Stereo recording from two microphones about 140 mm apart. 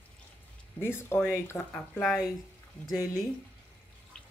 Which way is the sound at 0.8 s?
15° left (ahead or behind).